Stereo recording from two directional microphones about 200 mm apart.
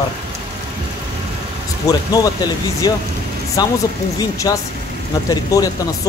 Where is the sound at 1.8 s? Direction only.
15° left (ahead or behind).